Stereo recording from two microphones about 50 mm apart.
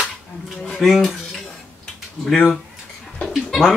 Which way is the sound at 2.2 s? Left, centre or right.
Centre.